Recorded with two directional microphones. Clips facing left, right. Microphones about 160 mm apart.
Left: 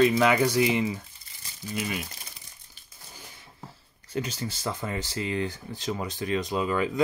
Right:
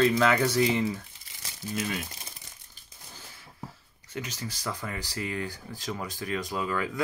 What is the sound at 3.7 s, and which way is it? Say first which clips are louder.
Speech: left 6 dB; 30° left (ahead or behind).